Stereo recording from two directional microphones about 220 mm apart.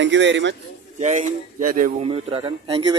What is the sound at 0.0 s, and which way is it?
Speech, 55° right (ahead or behind).